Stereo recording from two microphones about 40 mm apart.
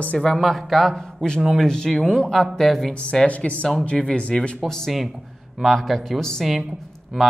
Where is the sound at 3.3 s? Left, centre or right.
Left.